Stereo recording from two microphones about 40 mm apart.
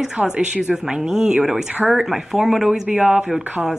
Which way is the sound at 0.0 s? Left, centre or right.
Centre.